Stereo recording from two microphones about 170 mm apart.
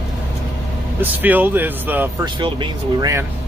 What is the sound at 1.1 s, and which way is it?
Speech, 10° right (ahead or behind).